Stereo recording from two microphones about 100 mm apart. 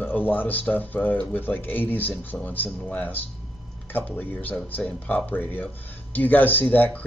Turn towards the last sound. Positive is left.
turn(degrees=15)  # may be behind; listen again after turning